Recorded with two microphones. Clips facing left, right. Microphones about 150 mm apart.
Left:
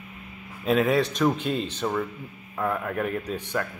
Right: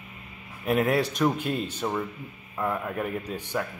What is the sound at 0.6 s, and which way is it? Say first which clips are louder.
Speech: left 2 dB; 10° right (ahead or behind).